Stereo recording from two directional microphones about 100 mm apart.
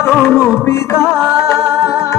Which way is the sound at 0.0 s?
5° right (ahead or behind).